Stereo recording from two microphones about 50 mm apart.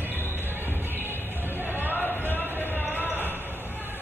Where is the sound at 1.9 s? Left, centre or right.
Left.